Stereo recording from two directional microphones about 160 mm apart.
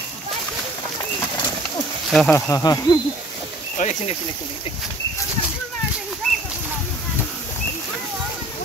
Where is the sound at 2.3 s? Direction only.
20° left (ahead or behind).